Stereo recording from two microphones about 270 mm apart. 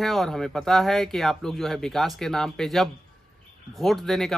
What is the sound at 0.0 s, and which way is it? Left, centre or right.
Speech, centre.